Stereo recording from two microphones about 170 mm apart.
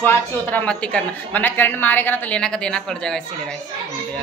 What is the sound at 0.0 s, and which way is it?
A woman's voice, 10° left (ahead or behind).